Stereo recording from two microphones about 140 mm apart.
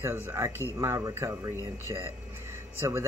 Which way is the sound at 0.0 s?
20° right (ahead or behind).